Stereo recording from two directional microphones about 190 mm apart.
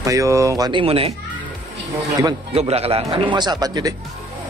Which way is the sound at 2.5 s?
30° right (ahead or behind).